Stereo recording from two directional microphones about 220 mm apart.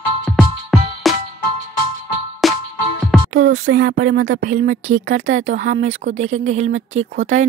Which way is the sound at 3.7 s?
40° right (ahead or behind).